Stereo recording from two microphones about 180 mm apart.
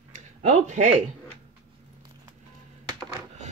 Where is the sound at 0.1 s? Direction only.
40° right (ahead or behind).